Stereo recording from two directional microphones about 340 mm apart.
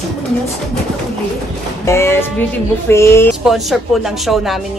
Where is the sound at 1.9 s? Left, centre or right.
Centre.